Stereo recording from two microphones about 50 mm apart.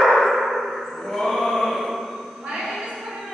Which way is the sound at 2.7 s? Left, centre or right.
Centre.